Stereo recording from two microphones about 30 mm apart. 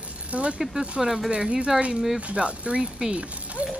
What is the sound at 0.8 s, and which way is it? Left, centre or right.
Speech, centre.